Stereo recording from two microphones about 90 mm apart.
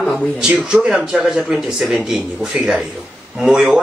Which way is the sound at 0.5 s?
15° right (ahead or behind).